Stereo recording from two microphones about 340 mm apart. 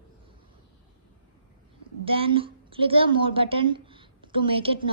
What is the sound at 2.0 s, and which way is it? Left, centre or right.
A woman's voice, centre.